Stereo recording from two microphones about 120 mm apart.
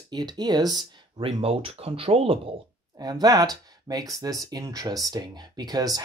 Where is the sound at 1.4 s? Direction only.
55° right (ahead or behind).